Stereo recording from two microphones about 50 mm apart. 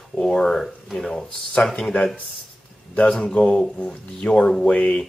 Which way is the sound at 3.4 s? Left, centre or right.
Centre.